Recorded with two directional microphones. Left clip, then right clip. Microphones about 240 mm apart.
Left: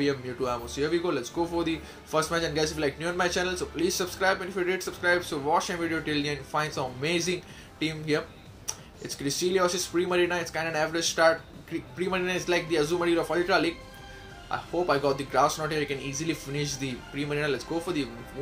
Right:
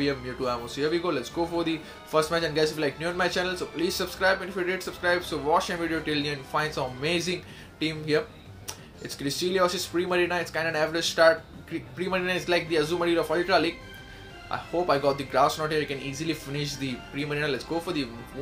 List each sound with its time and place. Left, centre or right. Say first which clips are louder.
0.0 s speech: even; centre